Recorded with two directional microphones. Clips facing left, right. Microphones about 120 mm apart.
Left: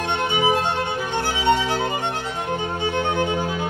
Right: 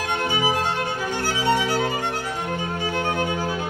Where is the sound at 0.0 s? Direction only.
25° left (ahead or behind).